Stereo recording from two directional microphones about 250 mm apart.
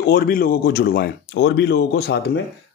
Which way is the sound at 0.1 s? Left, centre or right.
Left.